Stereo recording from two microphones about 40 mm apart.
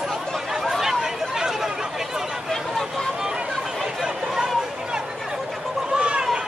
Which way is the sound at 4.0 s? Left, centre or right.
Centre.